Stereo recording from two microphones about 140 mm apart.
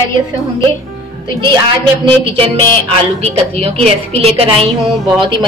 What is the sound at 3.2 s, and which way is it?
A woman's voice, 50° right (ahead or behind).